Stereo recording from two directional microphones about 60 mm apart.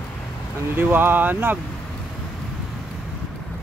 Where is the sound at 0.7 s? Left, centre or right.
Right.